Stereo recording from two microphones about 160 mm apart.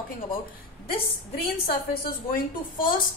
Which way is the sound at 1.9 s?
65° left (ahead or behind).